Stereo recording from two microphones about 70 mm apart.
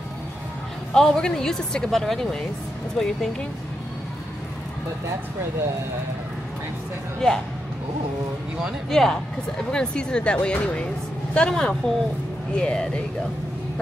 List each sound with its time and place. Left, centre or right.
0.9 s speech: centre
7.2 s speech: centre
8.9 s speech: centre